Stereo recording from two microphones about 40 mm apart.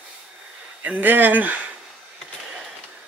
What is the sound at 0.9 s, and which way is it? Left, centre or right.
Speech, right.